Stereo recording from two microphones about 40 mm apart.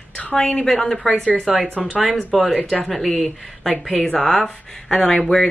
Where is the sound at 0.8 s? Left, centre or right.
Centre.